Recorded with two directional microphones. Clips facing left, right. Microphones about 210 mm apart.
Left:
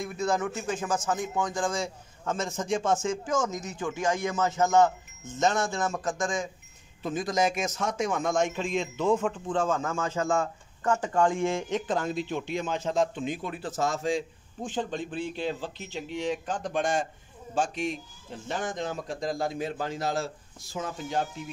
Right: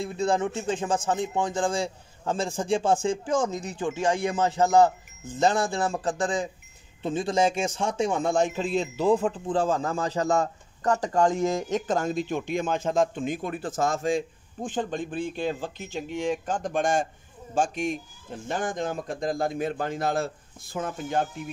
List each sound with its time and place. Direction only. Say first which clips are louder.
0.0 s a man's voice: right 3 dB; 30° right (ahead or behind); by 21.3 s 55° right (ahead or behind)